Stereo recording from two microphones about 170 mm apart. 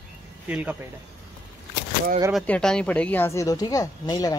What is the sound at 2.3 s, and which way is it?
Speech, 5° left (ahead or behind).